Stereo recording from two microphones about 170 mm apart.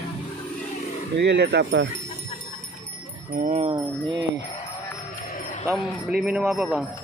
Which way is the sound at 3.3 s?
50° right (ahead or behind).